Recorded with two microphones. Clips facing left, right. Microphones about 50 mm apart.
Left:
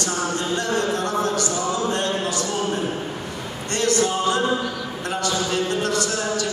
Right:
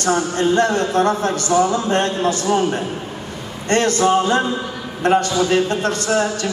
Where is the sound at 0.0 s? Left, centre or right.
Right.